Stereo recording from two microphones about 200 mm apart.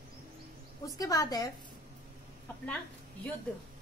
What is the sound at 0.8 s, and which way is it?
Speech, 15° left (ahead or behind).